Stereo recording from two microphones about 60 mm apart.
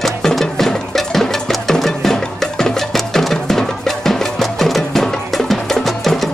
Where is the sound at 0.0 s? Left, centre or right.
Centre.